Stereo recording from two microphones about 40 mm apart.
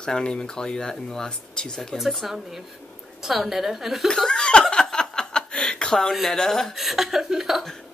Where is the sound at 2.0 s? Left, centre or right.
Centre.